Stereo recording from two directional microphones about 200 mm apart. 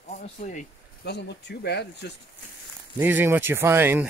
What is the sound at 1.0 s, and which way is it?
Speech, 55° left (ahead or behind).